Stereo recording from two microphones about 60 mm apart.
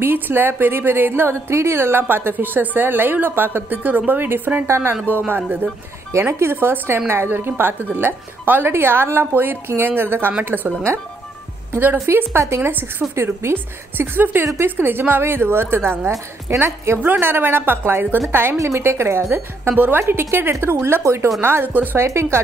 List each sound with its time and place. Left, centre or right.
0.0 s a woman's voice: right
1.5 s a woman's voice: right
5.1 s a woman's voice: right
11.7 s a woman's voice: right
14.4 s a woman's voice: right
14.8 s a woman's voice: right
17.0 s a woman's voice: right
18.6 s a woman's voice: right
21.4 s a woman's voice: right
22.0 s a woman's voice: right